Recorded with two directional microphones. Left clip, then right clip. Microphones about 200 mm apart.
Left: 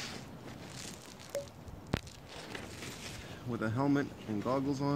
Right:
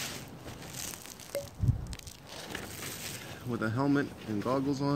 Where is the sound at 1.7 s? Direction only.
50° right (ahead or behind).